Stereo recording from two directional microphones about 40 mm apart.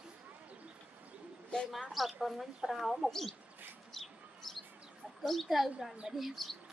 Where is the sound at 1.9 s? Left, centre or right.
Centre.